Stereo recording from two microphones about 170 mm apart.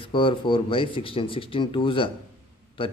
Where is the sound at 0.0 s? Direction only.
30° left (ahead or behind).